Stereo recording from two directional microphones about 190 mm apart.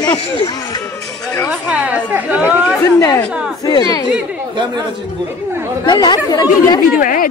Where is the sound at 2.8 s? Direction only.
15° left (ahead or behind).